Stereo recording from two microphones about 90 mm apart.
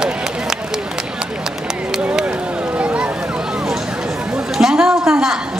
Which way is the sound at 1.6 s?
5° right (ahead or behind).